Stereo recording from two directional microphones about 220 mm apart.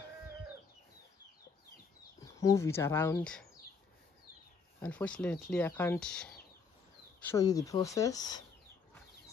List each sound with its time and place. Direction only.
2.2 s speech: 15° left (ahead or behind)
4.8 s speech: 5° left (ahead or behind)